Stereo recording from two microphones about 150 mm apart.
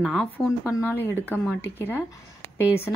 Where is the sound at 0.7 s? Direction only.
15° left (ahead or behind).